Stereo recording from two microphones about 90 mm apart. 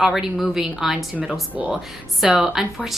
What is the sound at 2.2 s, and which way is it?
Speech, 5° right (ahead or behind).